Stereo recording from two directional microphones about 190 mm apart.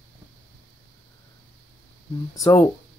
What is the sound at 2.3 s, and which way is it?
Speech, 20° left (ahead or behind).